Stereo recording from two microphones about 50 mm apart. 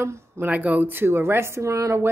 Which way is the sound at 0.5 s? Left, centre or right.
Right.